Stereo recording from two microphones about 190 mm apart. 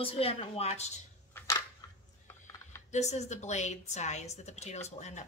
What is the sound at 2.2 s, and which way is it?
Typing, 15° left (ahead or behind).